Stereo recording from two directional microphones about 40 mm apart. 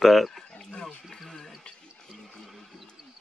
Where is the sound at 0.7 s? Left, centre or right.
Left.